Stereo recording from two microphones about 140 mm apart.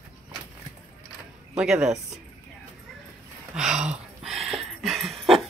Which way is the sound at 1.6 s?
5° right (ahead or behind).